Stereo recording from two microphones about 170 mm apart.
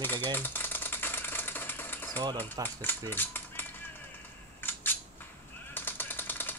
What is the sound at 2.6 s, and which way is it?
Mechanisms, 20° right (ahead or behind).